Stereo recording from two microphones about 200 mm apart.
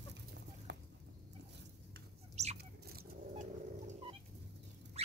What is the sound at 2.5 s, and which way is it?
Fowl, 50° right (ahead or behind).